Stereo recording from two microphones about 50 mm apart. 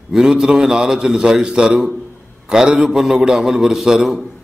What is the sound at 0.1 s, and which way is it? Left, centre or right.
A man's voice, centre.